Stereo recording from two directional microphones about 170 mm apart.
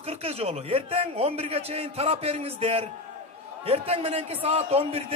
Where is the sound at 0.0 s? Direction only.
35° right (ahead or behind).